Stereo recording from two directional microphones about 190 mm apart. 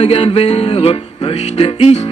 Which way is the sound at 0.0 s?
30° left (ahead or behind).